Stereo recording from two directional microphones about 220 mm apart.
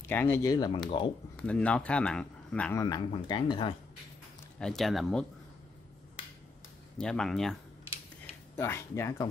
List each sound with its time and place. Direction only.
0.1 s speech: 10° left (ahead or behind)
1.3 s speech: 5° left (ahead or behind)
2.8 s speech: 20° left (ahead or behind)
4.6 s speech: centre (ahead or behind)
7.0 s speech: 5° left (ahead or behind)